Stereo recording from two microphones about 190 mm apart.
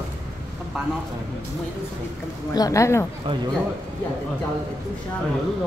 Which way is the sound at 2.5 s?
20° left (ahead or behind).